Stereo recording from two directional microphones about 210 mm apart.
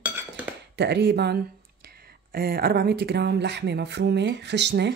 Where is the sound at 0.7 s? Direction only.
55° right (ahead or behind).